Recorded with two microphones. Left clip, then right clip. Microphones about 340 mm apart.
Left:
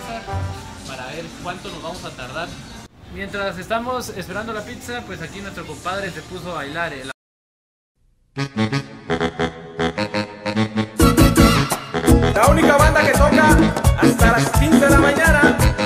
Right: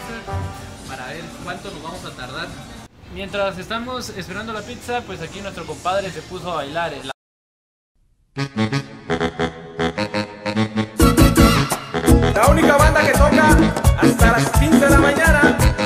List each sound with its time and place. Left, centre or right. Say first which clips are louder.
3.2 s speech: right 3 dB; centre
6.6 s speech: left 1 dB; centre
8.4 s music: even; centre